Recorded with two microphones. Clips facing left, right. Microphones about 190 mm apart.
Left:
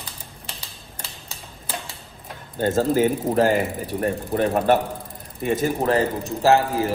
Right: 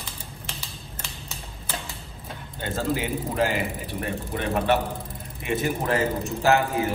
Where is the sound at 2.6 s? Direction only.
45° left (ahead or behind).